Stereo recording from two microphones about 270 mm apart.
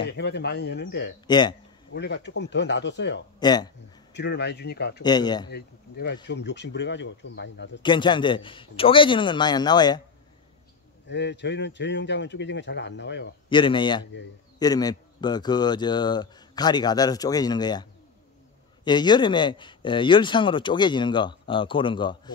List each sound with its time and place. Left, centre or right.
0.0 s speech: left
1.2 s speech: centre
2.0 s speech: left
3.3 s speech: centre
4.1 s speech: left
5.0 s speech: centre
5.5 s speech: left
7.8 s speech: centre
11.1 s speech: left
13.5 s speech: centre
18.9 s speech: centre